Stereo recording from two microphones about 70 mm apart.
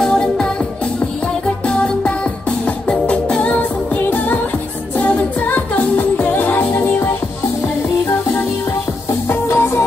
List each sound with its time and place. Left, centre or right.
0.0 s music: centre
1.7 s music: centre
9.3 s music: left